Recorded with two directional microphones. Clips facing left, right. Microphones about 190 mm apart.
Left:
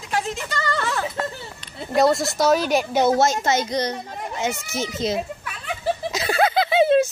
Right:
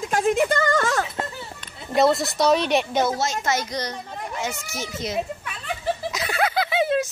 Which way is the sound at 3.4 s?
25° left (ahead or behind).